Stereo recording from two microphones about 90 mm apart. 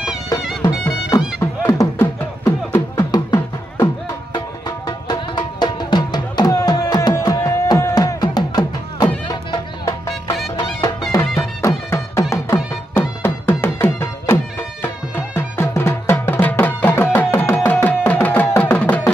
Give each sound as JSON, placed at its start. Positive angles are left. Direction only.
{"t": 0.8, "sound": "music", "side_deg": 30}
{"t": 3.0, "sound": "music", "side_deg": 45}
{"t": 11.6, "sound": "music", "side_deg": 30}